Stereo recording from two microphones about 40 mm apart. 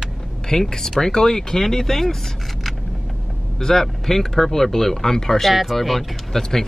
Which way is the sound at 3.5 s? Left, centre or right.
Centre.